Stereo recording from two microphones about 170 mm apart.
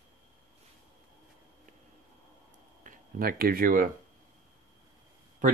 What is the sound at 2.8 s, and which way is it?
Speech, 55° right (ahead or behind).